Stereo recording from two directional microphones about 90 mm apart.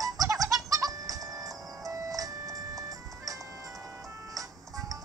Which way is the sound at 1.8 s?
40° right (ahead or behind).